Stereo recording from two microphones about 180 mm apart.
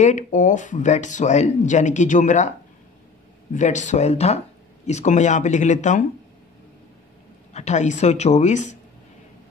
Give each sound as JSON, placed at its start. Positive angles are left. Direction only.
{"t": 0.0, "sound": "speech", "side_deg": 45}
{"t": 3.5, "sound": "speech", "side_deg": 40}
{"t": 7.5, "sound": "speech", "side_deg": 40}